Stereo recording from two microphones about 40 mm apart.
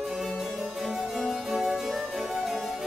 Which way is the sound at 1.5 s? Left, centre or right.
Centre.